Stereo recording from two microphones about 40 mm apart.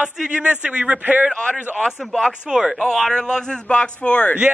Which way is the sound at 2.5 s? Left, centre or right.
Centre.